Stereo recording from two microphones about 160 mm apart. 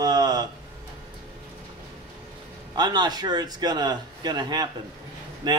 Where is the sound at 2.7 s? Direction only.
25° right (ahead or behind).